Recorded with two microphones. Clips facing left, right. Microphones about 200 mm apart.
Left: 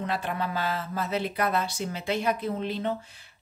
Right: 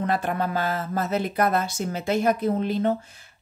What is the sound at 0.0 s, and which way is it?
Speech, 50° right (ahead or behind).